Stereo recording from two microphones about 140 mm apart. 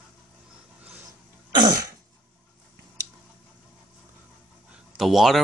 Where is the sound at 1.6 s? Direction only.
25° right (ahead or behind).